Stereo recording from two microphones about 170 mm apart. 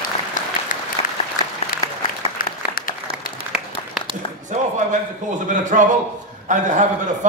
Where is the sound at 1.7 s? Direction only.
55° left (ahead or behind).